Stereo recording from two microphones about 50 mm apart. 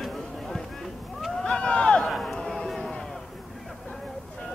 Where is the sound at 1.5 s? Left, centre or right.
Left.